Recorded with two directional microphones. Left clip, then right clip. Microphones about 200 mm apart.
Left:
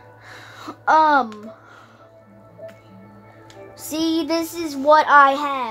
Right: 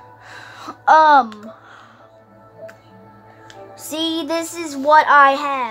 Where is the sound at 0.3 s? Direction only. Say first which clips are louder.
Right 2 dB; centre (ahead or behind).